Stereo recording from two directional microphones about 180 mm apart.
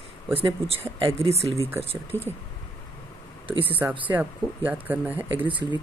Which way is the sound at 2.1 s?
15° left (ahead or behind).